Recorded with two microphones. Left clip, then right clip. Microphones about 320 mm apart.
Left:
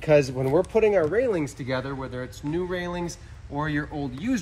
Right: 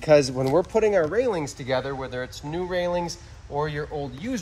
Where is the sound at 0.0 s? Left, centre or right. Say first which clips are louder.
Right 2 dB; right.